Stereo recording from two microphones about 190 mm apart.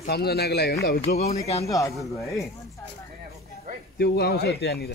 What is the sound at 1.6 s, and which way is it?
Speech, 15° left (ahead or behind).